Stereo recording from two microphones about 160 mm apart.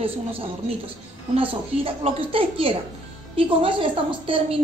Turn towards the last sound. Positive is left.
turn(degrees=-35)  # may be behind; listen again after turning